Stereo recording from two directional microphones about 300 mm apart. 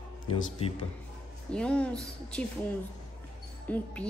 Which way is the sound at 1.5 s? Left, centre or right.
Centre.